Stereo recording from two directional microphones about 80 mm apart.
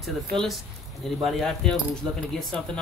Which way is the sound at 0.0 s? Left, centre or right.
Centre.